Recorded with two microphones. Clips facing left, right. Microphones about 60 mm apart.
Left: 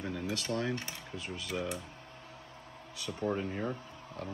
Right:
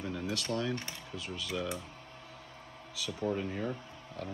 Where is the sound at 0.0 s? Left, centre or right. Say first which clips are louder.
Even; left.